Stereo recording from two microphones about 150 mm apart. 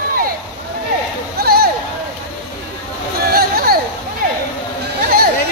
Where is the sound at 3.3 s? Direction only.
85° right.